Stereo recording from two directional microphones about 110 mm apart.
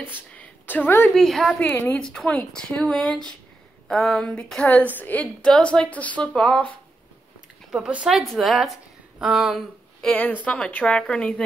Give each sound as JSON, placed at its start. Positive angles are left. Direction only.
{"t": 0.0, "sound": "a sound", "side_deg": 15}
{"t": 1.1, "sound": "a woman's voice", "side_deg": 0}
{"t": 1.6, "sound": "speech", "side_deg": 20}
{"t": 2.1, "sound": "speech", "side_deg": 10}
{"t": 7.7, "sound": "a woman's voice", "side_deg": -5}
{"t": 10.0, "sound": "speech", "side_deg": 15}